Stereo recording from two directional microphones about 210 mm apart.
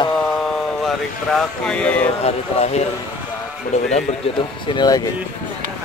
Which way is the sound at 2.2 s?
30° left (ahead or behind).